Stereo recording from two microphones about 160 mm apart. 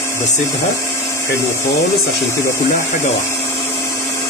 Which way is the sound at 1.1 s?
20° left (ahead or behind).